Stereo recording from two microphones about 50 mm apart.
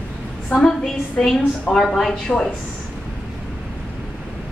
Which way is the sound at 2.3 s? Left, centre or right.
Centre.